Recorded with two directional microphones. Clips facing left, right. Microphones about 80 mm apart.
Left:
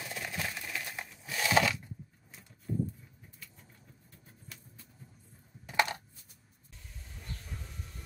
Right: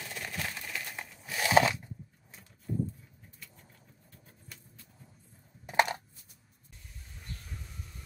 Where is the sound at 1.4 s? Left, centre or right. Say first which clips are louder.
Right 3 dB; right.